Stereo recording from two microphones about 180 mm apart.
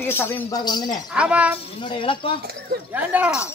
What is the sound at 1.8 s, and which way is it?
Speech, 25° left (ahead or behind).